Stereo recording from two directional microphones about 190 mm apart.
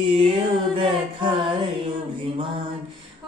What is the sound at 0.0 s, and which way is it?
Music, 30° right (ahead or behind).